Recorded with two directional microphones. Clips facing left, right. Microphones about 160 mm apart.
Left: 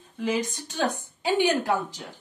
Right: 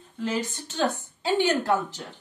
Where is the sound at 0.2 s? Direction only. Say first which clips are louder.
Left 2 dB; 15° left (ahead or behind).